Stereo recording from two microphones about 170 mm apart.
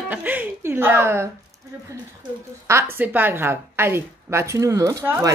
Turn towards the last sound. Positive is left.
turn(degrees=-15)  # may be behind; listen again after turning